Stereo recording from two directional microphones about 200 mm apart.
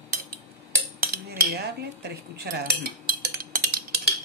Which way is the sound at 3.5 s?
45° right (ahead or behind).